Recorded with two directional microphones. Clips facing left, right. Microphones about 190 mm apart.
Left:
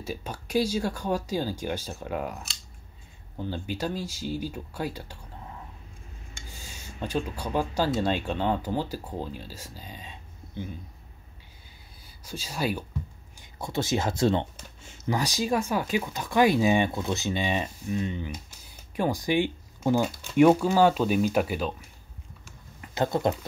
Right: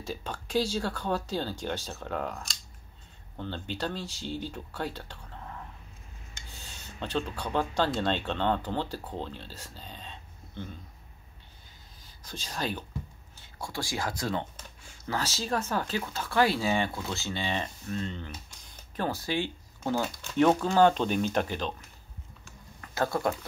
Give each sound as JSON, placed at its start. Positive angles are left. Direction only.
{"t": 0.0, "sound": "speech", "side_deg": 10}
{"t": 12.0, "sound": "speech", "side_deg": 10}
{"t": 13.4, "sound": "speech", "side_deg": 20}
{"t": 22.8, "sound": "speech", "side_deg": 20}